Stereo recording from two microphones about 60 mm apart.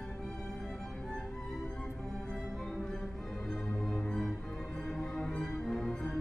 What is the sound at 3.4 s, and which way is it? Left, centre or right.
Music, centre.